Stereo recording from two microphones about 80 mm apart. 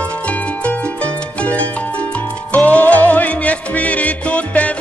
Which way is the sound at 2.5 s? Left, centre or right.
Centre.